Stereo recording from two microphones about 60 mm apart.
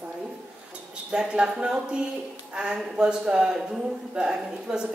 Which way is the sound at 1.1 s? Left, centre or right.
Centre.